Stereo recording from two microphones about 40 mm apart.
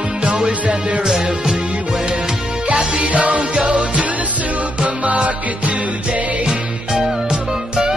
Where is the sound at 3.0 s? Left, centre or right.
Right.